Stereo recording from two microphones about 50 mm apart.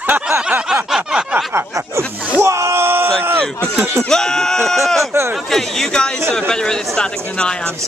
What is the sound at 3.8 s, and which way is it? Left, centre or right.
Speech, right.